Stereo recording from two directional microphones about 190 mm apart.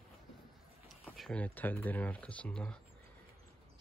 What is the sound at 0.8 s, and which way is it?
Speech, centre (ahead or behind).